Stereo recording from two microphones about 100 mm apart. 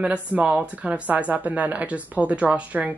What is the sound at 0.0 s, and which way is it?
Speech, 15° right (ahead or behind).